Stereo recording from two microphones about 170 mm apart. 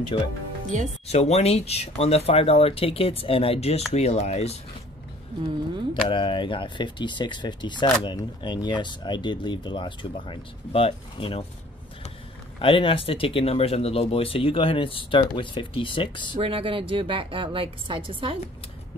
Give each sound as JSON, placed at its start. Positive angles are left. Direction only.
{"t": 0.1, "sound": "speech", "side_deg": 30}
{"t": 1.0, "sound": "speech", "side_deg": 40}
{"t": 6.0, "sound": "speech", "side_deg": 30}
{"t": 12.5, "sound": "speech", "side_deg": 30}
{"t": 16.3, "sound": "a woman's voice", "side_deg": -35}